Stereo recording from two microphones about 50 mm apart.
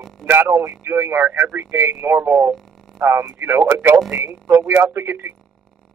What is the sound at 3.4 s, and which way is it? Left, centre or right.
Speech, right.